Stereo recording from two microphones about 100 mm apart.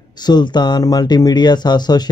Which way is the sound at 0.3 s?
45° left (ahead or behind).